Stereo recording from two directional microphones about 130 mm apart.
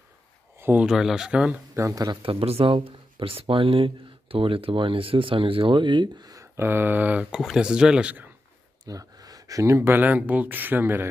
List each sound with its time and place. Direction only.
0.6 s a sound: 15° right (ahead or behind)
0.8 s speech: 5° right (ahead or behind)
1.8 s speech: 25° right (ahead or behind)
2.2 s speech: 50° right (ahead or behind); by 8.3 s 10° right (ahead or behind)
8.8 s speech: 30° right (ahead or behind)